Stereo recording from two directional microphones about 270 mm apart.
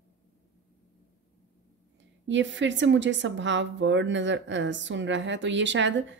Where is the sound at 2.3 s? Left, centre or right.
Right.